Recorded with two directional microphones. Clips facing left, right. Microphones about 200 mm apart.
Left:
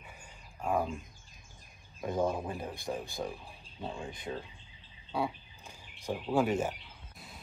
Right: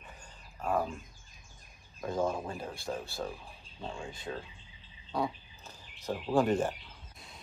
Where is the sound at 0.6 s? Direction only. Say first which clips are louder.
Even; 15° left (ahead or behind).